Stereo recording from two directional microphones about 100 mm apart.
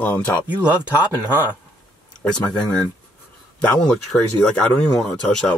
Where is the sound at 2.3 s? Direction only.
10° left (ahead or behind).